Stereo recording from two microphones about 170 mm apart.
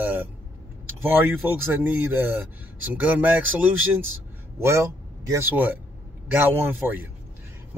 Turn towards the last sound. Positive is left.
turn(degrees=-10)  # may be behind; listen again after turning